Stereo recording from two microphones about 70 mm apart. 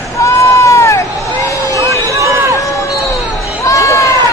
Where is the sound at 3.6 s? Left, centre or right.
Left.